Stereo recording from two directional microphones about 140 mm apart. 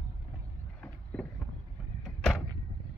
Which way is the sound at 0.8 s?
10° left (ahead or behind).